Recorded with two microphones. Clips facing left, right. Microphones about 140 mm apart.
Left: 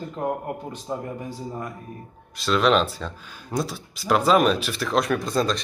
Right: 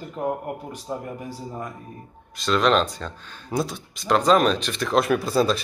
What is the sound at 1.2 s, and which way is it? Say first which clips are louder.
Speech: left 1 dB; 10° right (ahead or behind).